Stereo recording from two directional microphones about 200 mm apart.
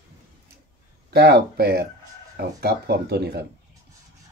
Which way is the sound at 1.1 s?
50° right (ahead or behind).